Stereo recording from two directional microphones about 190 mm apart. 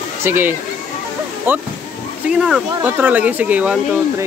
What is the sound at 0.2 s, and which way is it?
Speech, 10° right (ahead or behind).